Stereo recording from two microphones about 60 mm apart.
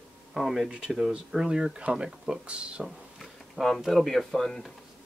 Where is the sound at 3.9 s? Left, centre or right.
Centre.